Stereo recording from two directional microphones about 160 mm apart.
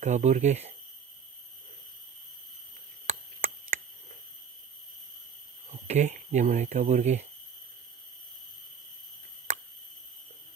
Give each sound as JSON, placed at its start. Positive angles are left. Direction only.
{"t": 0.0, "sound": "speech", "side_deg": -50}
{"t": 3.3, "sound": "chop", "side_deg": -55}
{"t": 5.9, "sound": "speech", "side_deg": -45}